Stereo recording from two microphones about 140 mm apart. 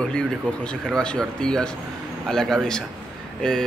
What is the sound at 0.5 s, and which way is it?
Speech, 10° left (ahead or behind).